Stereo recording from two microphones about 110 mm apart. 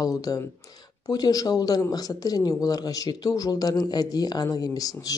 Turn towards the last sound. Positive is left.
turn(degrees=35)  # may be behind; listen again after turning